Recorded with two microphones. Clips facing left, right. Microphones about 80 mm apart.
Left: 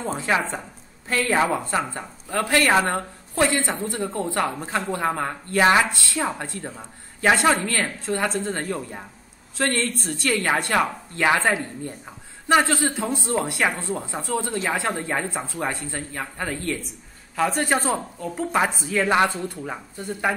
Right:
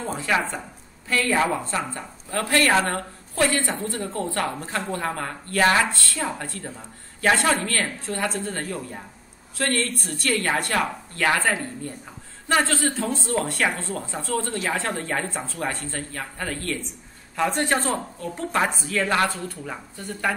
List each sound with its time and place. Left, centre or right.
0.0 s a woman's voice: left
17.4 s a woman's voice: centre